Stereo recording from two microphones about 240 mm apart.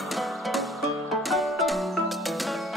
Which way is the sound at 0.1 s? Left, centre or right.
Centre.